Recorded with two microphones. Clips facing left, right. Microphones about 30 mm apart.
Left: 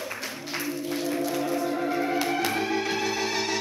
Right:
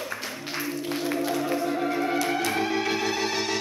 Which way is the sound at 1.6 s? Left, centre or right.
Centre.